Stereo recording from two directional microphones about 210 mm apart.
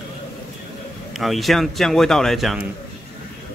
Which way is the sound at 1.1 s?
Centre (ahead or behind).